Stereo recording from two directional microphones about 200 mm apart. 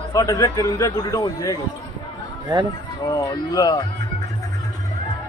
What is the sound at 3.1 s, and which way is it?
Speech, 20° left (ahead or behind).